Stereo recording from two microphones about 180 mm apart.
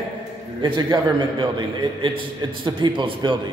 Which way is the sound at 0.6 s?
25° right (ahead or behind).